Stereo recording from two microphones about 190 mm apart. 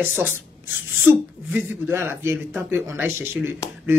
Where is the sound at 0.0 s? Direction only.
10° right (ahead or behind).